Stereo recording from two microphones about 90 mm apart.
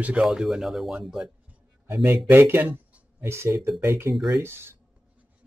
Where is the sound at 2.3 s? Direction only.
25° right (ahead or behind).